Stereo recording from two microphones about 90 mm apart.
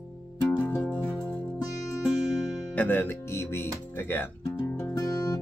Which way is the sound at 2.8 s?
20° left (ahead or behind).